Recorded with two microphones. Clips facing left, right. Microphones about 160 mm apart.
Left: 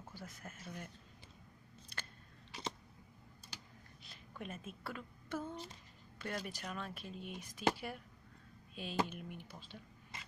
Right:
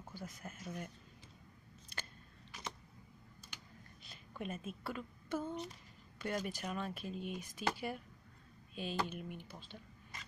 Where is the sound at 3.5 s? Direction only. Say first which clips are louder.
Left 2 dB; 35° left (ahead or behind).